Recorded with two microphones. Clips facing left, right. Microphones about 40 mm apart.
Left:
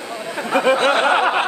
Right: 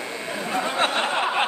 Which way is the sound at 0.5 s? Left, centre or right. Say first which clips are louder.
Left 8 dB; left.